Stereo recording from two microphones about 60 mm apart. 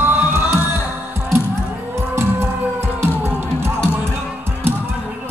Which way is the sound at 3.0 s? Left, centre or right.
Right.